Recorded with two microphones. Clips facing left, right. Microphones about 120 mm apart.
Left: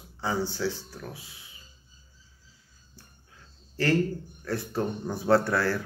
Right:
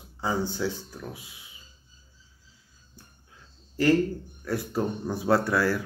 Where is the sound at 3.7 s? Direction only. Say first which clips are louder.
Right 4 dB; 15° right (ahead or behind).